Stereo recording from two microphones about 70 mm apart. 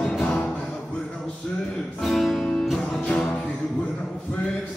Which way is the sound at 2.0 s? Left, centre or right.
Centre.